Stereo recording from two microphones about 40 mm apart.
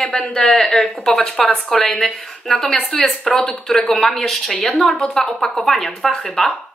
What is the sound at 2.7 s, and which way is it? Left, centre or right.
Speech, left.